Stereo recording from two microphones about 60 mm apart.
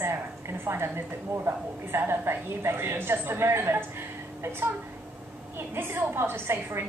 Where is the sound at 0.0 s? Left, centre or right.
Right.